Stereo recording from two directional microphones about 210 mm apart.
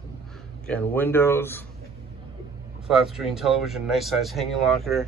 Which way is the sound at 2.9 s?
Centre (ahead or behind).